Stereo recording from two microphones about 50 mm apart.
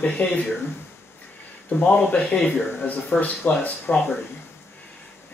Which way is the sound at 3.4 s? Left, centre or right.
Left.